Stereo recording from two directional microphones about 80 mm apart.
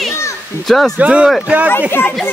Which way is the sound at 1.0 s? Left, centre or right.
Centre.